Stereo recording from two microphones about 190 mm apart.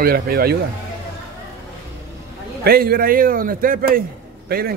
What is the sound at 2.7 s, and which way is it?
A man's voice, 55° right (ahead or behind).